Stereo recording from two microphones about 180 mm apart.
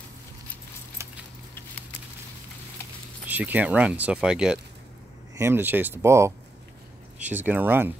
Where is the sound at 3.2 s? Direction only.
10° right (ahead or behind).